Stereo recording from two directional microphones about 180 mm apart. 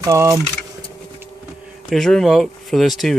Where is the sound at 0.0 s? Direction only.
20° right (ahead or behind).